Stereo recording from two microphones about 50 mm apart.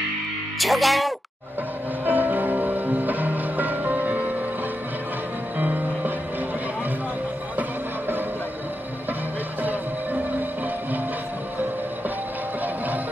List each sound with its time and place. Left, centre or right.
0.6 s speech: centre
2.0 s music: right
5.6 s music: right
12.6 s music: right